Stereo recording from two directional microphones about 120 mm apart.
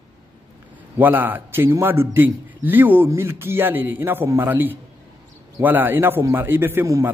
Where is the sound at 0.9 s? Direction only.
15° right (ahead or behind).